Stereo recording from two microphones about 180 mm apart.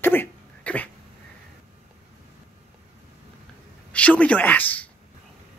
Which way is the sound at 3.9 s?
5° left (ahead or behind).